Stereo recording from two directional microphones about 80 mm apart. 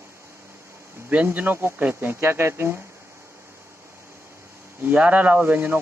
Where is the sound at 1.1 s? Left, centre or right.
Right.